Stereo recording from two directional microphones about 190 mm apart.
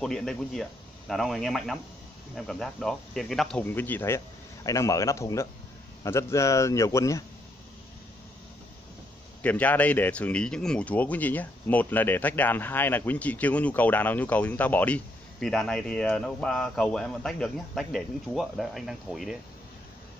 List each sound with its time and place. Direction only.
0.0 s a man's voice: 5° left (ahead or behind)
9.4 s a man's voice: 10° left (ahead or behind)